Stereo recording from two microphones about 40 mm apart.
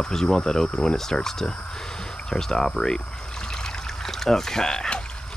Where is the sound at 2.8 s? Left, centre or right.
Centre.